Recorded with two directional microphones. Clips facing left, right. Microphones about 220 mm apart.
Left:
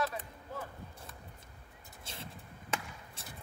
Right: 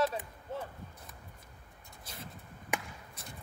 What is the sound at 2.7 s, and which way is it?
Chop, 15° right (ahead or behind).